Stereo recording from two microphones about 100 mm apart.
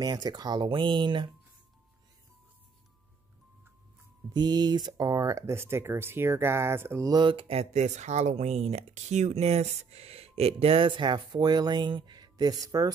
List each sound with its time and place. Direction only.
0.0 s speech: 40° right (ahead or behind)
4.3 s speech: 45° right (ahead or behind); by 7.1 s 25° right (ahead or behind)
7.1 s speech: 50° right (ahead or behind); by 7.6 s 70° right (ahead or behind)
8.2 s speech: 90° right; by 12.9 s 35° right (ahead or behind)